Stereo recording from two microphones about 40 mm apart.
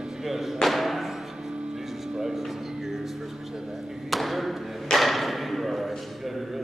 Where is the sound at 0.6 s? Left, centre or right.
Centre.